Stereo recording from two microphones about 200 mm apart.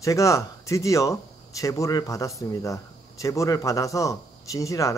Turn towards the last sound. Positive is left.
turn(degrees=15)  # may be behind; listen again after turning